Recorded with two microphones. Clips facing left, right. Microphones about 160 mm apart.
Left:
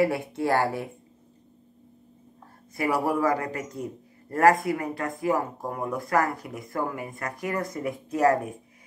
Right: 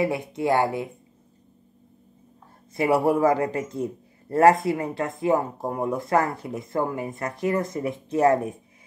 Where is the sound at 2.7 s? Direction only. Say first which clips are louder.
Right 5 dB; 25° right (ahead or behind).